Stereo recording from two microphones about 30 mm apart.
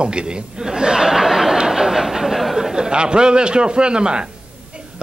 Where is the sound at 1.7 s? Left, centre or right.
Centre.